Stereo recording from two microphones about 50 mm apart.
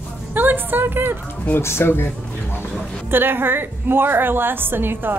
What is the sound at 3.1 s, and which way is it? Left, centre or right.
A woman's voice, right.